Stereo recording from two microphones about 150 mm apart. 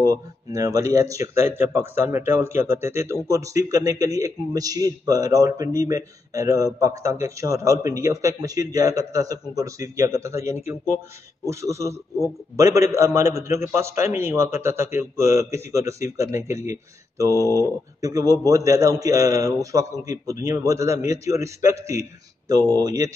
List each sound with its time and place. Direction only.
0.0 s speech: 25° right (ahead or behind)
17.4 s speech: 20° left (ahead or behind)
18.0 s speech: 25° right (ahead or behind)